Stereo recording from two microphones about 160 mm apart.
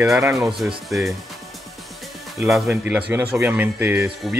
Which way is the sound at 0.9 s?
Centre (ahead or behind).